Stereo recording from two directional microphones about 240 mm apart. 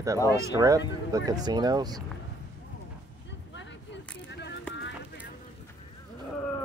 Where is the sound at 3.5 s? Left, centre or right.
Left.